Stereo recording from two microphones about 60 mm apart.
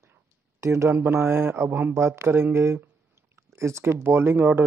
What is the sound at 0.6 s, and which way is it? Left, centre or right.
Speech, right.